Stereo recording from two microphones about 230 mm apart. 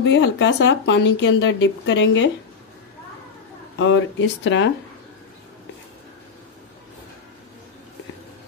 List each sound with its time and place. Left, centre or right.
0.0 s speech: left
3.7 s speech: left